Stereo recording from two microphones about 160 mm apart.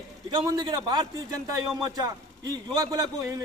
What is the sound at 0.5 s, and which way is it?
A man's voice, 25° right (ahead or behind).